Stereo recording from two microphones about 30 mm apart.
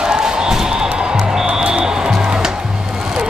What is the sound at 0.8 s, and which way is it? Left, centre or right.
Music, right.